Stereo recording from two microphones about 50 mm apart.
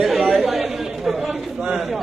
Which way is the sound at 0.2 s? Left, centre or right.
Right.